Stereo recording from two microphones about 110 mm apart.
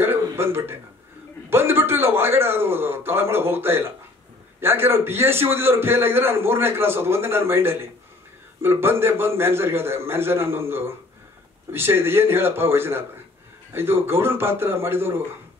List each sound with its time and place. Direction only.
0.0 s throat clearing: 20° right (ahead or behind)
1.5 s a man's voice: 20° right (ahead or behind)